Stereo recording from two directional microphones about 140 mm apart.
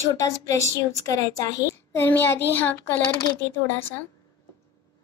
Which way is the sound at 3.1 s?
25° left (ahead or behind).